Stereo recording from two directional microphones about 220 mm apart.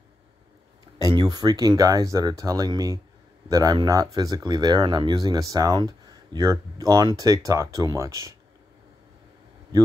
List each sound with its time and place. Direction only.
0.9 s speech: 15° right (ahead or behind)